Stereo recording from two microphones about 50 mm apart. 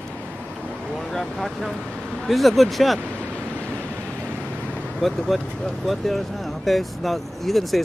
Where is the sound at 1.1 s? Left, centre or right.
Centre.